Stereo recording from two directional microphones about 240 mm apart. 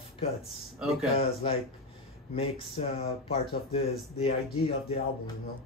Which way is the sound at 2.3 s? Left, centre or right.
Left.